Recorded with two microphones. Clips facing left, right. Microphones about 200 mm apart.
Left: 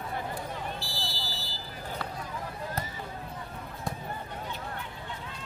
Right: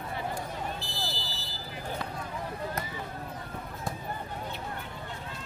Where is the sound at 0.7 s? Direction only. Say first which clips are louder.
Right 1 dB; 20° right (ahead or behind).